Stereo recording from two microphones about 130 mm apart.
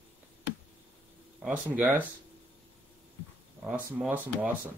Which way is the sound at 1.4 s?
10° right (ahead or behind).